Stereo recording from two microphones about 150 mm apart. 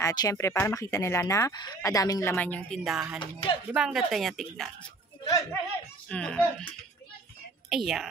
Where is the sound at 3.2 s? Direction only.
30° left (ahead or behind).